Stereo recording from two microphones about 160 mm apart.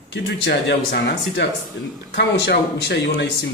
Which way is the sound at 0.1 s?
90° left.